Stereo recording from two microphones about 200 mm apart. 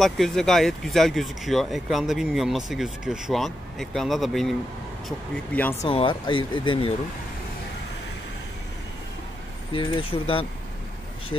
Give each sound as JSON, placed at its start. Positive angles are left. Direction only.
{"t": 0.0, "sound": "speech", "side_deg": 0}
{"t": 5.8, "sound": "speech", "side_deg": 25}
{"t": 9.7, "sound": "speech", "side_deg": 25}